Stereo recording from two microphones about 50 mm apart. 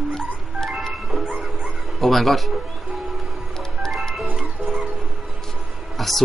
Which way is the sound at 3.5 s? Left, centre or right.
Centre.